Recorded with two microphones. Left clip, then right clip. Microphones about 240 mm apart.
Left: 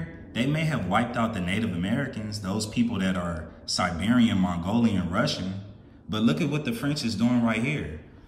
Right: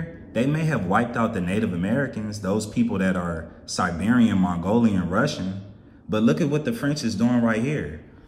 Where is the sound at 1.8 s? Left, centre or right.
Centre.